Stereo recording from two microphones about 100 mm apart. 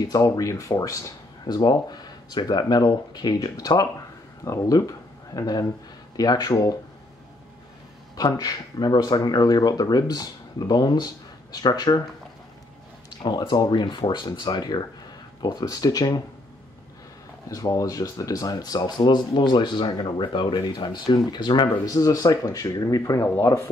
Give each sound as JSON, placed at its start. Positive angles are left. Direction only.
{"t": 0.1, "sound": "speech", "side_deg": 35}
{"t": 1.4, "sound": "speech", "side_deg": 45}
{"t": 8.2, "sound": "speech", "side_deg": 40}
{"t": 13.2, "sound": "speech", "side_deg": 50}
{"t": 17.5, "sound": "speech", "side_deg": 35}